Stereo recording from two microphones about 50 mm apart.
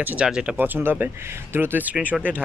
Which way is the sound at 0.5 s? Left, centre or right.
Right.